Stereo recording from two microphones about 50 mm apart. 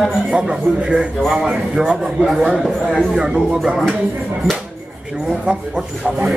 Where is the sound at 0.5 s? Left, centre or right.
Centre.